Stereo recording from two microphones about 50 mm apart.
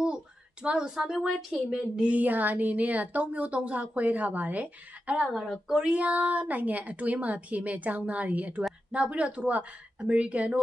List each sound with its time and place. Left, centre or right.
0.0 s a sound: right
0.9 s a woman's voice: centre
2.0 s speech: right
5.2 s a woman's voice: centre
5.7 s a woman's voice: centre